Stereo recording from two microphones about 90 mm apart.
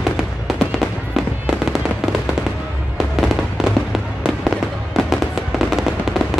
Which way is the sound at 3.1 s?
5° right (ahead or behind).